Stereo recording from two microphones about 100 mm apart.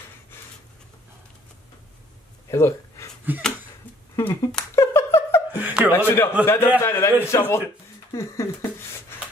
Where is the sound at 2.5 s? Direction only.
30° left (ahead or behind).